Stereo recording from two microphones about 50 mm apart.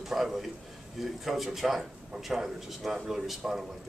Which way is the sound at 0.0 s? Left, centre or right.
Centre.